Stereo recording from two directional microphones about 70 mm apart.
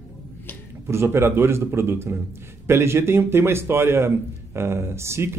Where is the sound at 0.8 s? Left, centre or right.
Right.